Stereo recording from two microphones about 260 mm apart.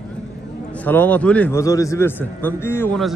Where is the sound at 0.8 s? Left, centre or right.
Centre.